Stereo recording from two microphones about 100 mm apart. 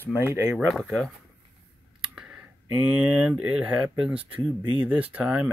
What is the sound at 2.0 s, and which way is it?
Speech, 10° right (ahead or behind).